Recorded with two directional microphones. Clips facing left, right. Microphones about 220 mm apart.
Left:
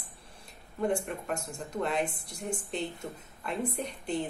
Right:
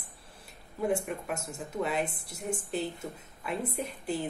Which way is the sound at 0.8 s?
5° right (ahead or behind).